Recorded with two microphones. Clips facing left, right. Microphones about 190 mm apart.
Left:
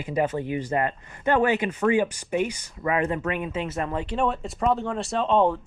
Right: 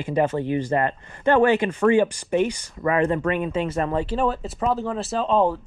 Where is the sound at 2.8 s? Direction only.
30° right (ahead or behind).